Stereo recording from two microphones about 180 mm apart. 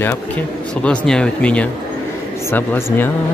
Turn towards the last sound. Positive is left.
turn(degrees=10)  # may be behind; listen again after turning